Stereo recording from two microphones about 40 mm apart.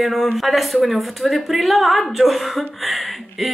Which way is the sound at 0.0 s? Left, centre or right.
Centre.